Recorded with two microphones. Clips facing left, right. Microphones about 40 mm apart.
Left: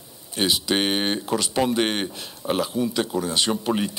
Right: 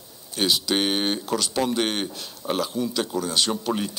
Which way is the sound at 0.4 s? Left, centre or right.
Left.